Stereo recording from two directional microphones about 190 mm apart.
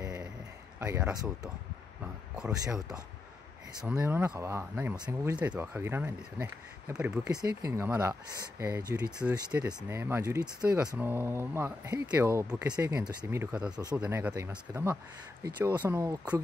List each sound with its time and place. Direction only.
0.7 s speech: 15° right (ahead or behind)
3.8 s speech: 5° right (ahead or behind)
9.2 s speech: 5° right (ahead or behind)